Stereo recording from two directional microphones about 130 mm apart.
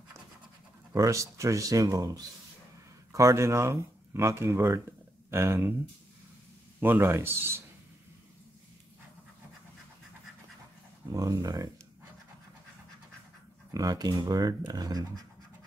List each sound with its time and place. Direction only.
0.9 s speech: 25° right (ahead or behind)
6.8 s speech: 15° right (ahead or behind)
11.1 s speech: 25° right (ahead or behind)
13.7 s speech: 30° right (ahead or behind)